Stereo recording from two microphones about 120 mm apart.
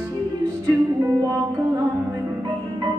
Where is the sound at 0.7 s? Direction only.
25° right (ahead or behind).